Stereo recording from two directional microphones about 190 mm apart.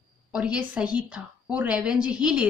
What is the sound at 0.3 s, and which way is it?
A woman's voice, 5° right (ahead or behind).